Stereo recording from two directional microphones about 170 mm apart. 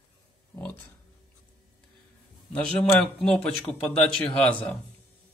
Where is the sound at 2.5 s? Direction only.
10° left (ahead or behind).